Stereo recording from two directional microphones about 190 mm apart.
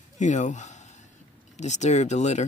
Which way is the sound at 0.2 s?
40° left (ahead or behind).